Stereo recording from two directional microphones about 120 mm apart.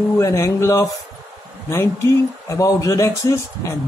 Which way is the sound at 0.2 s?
25° left (ahead or behind).